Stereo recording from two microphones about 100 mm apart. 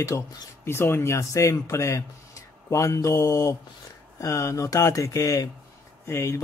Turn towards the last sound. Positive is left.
turn(degrees=25)  # may be behind; listen again after turning